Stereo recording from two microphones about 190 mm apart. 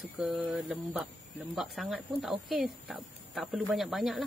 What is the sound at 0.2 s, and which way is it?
Speech, centre (ahead or behind).